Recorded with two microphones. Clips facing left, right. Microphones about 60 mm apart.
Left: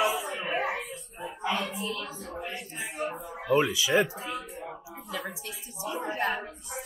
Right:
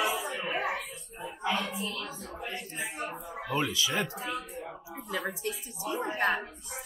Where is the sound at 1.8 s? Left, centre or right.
Centre.